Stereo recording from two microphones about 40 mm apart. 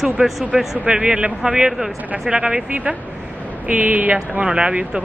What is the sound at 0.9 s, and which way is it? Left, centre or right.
A man's voice, right.